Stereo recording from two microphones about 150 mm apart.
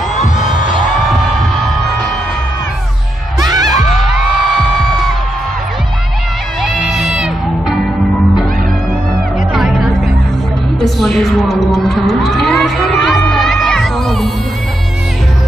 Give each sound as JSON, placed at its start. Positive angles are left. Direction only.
{"t": 0.1, "sound": "music", "side_deg": 55}
{"t": 3.3, "sound": "music", "side_deg": -25}
{"t": 6.6, "sound": "music", "side_deg": 0}
{"t": 9.5, "sound": "music", "side_deg": 0}